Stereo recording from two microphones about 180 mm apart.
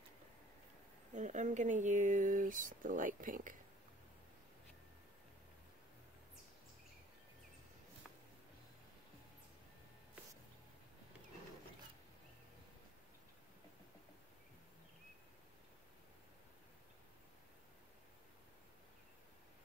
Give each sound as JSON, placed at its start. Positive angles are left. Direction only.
{"t": 1.1, "sound": "speech", "side_deg": -45}